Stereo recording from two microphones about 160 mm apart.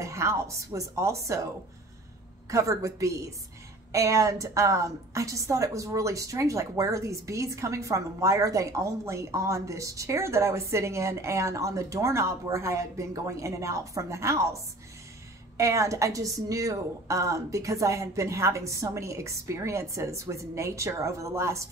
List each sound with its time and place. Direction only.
0.0 s a woman's voice: 20° right (ahead or behind)
2.5 s a woman's voice: 20° right (ahead or behind)